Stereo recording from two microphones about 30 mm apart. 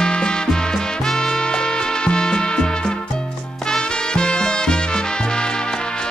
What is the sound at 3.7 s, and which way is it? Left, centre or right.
Music, left.